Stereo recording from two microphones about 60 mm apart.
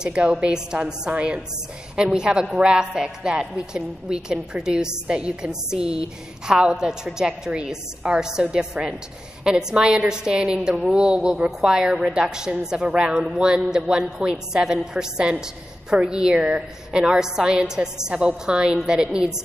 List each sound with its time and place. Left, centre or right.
0.0 s a woman's voice: centre